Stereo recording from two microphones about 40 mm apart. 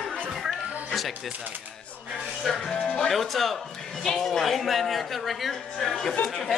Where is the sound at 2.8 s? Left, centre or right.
Left.